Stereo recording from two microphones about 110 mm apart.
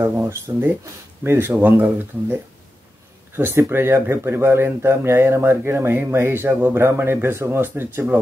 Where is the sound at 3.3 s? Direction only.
20° right (ahead or behind).